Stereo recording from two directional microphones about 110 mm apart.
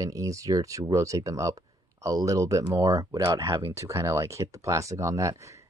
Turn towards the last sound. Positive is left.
turn(degrees=-25)  # may be behind; listen again after turning